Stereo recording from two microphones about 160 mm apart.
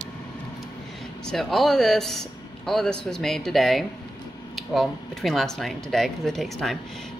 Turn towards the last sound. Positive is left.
turn(degrees=0)  # may be behind; listen again after turning